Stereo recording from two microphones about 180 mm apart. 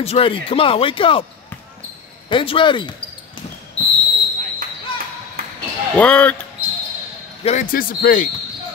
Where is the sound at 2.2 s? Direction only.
30° left (ahead or behind).